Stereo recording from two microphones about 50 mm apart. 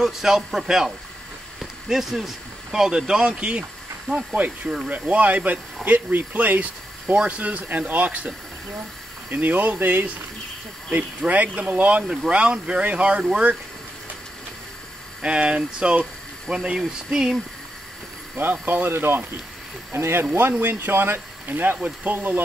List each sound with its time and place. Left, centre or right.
0.0 s speech: centre
4.8 s speech: right
12.0 s speech: centre
12.3 s speech: right
15.2 s speech: right
18.3 s speech: right
20.3 s speech: right